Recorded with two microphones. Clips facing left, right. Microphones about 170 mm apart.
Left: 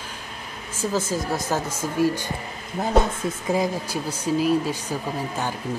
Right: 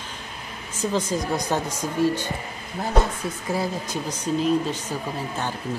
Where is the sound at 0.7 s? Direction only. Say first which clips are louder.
Even; 5° left (ahead or behind).